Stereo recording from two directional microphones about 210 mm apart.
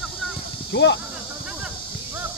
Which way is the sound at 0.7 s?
55° left (ahead or behind).